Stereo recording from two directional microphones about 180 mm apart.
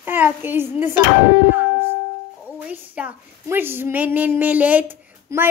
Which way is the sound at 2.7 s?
10° right (ahead or behind).